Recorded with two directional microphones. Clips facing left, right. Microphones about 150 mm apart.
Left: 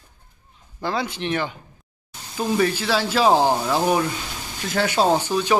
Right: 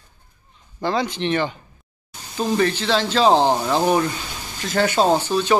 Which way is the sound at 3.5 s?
15° right (ahead or behind).